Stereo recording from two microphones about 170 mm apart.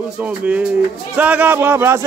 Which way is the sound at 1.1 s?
10° right (ahead or behind).